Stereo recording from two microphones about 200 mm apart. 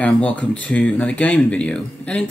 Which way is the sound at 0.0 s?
5° left (ahead or behind).